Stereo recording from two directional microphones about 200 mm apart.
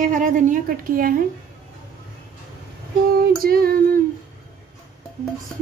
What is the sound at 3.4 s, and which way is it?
Speech, 50° right (ahead or behind).